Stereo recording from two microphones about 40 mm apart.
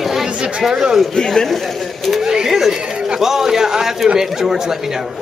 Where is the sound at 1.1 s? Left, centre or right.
Centre.